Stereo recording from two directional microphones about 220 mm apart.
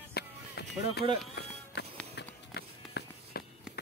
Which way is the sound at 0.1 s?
50° left (ahead or behind).